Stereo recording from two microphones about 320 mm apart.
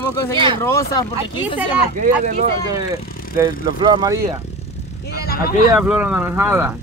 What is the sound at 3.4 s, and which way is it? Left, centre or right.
Speech, centre.